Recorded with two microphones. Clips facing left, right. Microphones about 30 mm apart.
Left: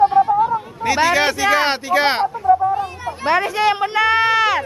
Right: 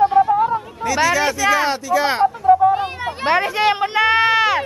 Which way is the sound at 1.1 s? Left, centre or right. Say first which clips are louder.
Left 1 dB; left.